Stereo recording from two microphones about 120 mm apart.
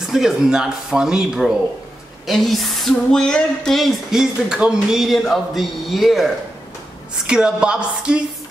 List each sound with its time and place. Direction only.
0.0 s a woman's voice: 5° right (ahead or behind)